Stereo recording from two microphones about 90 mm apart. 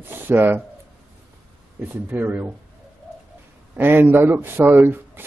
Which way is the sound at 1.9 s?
20° right (ahead or behind).